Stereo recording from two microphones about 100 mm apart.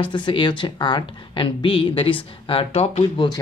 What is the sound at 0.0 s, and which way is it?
A woman's voice, 55° left (ahead or behind).